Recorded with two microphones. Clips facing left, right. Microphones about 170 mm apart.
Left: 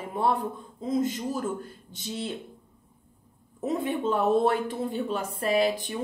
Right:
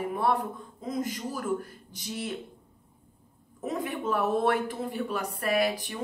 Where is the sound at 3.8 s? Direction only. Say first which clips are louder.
Left 2 dB; 25° left (ahead or behind).